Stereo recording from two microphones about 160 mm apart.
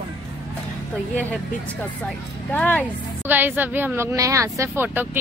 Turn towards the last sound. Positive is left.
turn(degrees=-10)  # may be behind; listen again after turning